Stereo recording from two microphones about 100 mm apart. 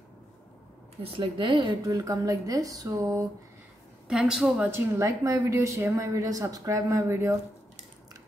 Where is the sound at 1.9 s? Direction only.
35° right (ahead or behind).